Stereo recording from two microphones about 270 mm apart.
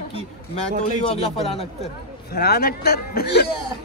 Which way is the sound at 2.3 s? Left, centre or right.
Left.